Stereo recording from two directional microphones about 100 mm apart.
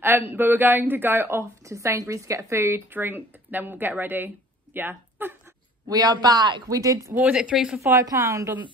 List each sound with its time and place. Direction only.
0.0 s speech: 20° right (ahead or behind)
5.9 s speech: 40° right (ahead or behind)
6.7 s speech: 35° right (ahead or behind)
7.2 s a woman's voice: 15° right (ahead or behind)
8.0 s speech: 30° right (ahead or behind)